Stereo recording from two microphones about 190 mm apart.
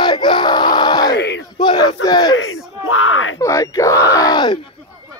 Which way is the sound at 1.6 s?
25° left (ahead or behind).